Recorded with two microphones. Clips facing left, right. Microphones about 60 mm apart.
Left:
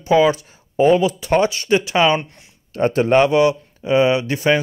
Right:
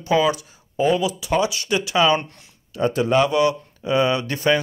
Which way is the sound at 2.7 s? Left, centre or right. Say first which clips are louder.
Left 4 dB; left.